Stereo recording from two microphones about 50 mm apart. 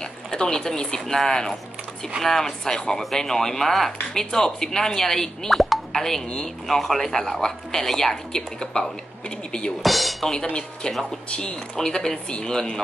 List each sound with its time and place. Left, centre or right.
0.0 s speech: centre
9.8 s speech: centre
10.5 s speech: centre